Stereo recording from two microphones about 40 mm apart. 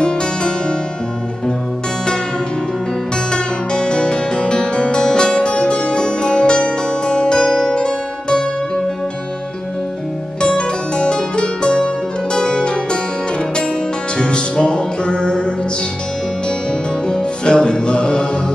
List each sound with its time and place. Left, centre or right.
0.0 s harpsichord: left
3.3 s music: left
10.4 s music: left
14.1 s music: left
17.1 s music: centre